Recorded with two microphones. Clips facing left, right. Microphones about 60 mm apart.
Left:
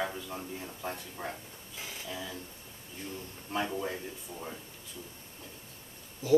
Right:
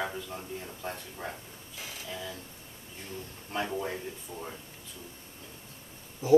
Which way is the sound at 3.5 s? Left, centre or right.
Centre.